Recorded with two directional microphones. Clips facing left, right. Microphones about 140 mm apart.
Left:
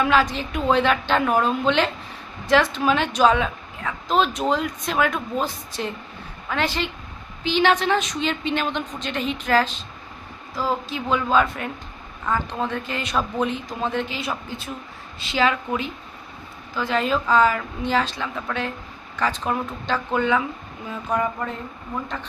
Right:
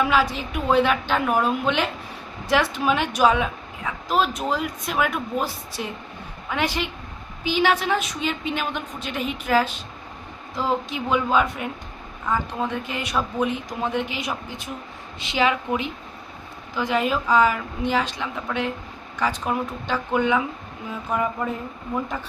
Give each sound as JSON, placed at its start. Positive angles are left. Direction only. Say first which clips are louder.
{"t": 0.0, "sound": "speech", "louder": "left 1 dB", "side_deg": -10}